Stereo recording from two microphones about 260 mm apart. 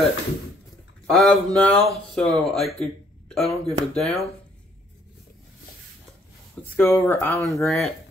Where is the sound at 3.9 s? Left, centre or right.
Centre.